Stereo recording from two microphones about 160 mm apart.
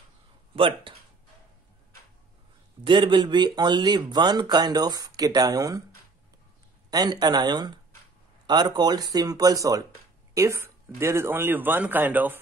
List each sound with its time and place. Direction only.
0.6 s speech: 35° right (ahead or behind)
2.8 s speech: 30° right (ahead or behind)
6.9 s speech: 25° right (ahead or behind)